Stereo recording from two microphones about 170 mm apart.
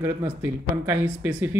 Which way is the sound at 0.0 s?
15° right (ahead or behind).